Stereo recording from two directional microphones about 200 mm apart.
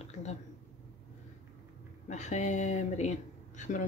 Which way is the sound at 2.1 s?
35° left (ahead or behind).